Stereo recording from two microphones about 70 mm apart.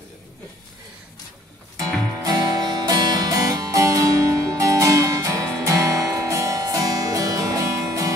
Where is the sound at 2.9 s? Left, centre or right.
Right.